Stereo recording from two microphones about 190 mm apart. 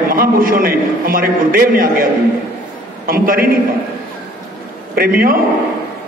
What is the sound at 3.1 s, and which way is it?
Speech, 50° right (ahead or behind).